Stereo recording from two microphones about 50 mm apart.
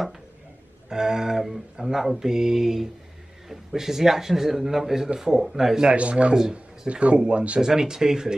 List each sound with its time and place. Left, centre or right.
0.8 s speech: centre
5.9 s speech: right
7.6 s speech: centre